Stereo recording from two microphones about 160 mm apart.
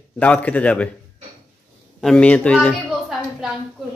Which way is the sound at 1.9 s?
5° left (ahead or behind).